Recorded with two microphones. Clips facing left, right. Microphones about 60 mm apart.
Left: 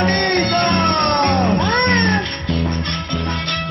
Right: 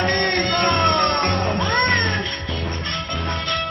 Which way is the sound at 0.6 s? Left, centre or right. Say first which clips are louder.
Right 2 dB; left.